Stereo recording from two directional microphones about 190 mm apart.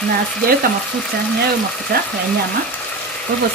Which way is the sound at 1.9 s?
55° right (ahead or behind).